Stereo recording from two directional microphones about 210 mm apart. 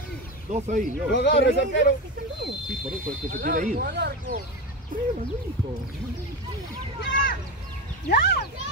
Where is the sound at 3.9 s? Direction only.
55° right (ahead or behind).